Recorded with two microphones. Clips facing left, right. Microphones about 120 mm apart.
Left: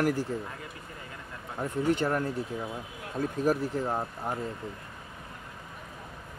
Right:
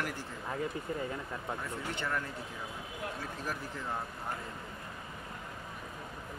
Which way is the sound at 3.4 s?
40° left (ahead or behind).